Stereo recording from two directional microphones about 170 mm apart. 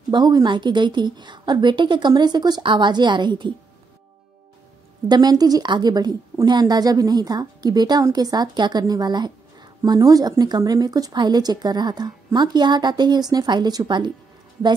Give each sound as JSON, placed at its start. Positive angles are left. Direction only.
{"t": 0.1, "sound": "a woman's voice", "side_deg": -25}
{"t": 5.0, "sound": "a woman's voice", "side_deg": -25}